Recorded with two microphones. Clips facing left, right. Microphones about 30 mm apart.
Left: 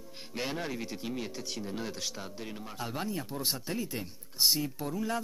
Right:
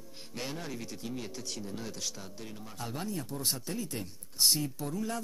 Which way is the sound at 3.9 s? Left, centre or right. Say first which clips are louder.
Left 1 dB; centre.